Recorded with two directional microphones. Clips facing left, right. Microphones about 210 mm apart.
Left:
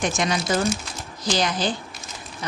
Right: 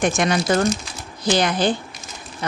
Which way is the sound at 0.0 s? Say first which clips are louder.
Right 5 dB; 55° right (ahead or behind).